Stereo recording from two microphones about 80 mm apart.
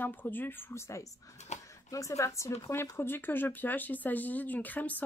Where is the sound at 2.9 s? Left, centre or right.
Left.